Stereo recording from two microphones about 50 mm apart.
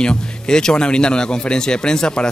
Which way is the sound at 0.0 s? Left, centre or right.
Centre.